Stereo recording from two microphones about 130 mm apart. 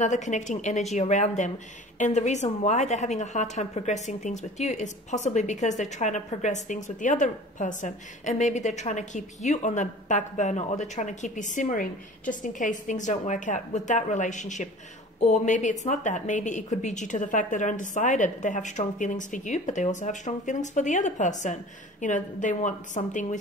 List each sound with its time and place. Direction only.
0.0 s a woman's voice: 65° left (ahead or behind)